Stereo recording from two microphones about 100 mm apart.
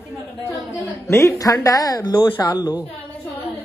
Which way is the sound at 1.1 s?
30° left (ahead or behind).